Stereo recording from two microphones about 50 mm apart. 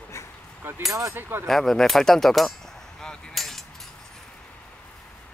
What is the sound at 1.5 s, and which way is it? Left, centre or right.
Speech, centre.